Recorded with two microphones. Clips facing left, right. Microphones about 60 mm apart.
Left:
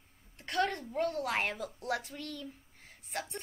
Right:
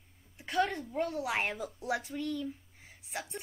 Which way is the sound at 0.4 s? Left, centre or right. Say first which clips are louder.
Right 1 dB; centre.